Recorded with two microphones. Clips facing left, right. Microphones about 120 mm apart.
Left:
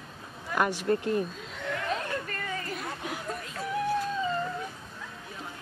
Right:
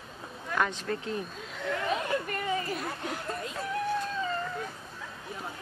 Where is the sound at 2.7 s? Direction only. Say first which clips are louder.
Right 1 dB; centre (ahead or behind).